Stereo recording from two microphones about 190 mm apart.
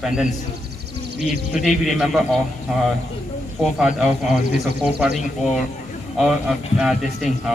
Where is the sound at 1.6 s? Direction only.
Centre (ahead or behind).